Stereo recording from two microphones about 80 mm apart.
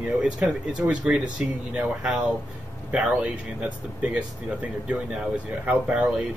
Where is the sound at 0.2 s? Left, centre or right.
Centre.